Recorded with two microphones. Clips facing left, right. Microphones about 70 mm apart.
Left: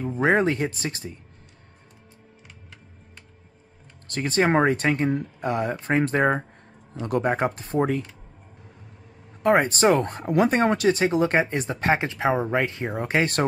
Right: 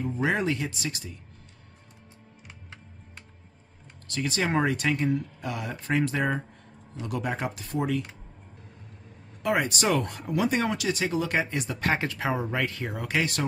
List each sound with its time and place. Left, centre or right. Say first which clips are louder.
0.2 s speech: left 7 dB; left
4.1 s speech: left 6 dB; left
9.4 s speech: left 7 dB; left